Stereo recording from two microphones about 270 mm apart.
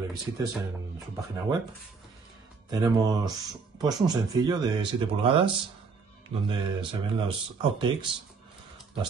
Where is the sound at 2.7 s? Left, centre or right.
Centre.